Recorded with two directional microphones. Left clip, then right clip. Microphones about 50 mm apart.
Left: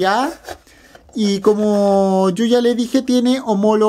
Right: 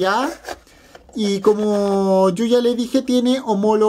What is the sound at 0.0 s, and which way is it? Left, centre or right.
Speech, centre.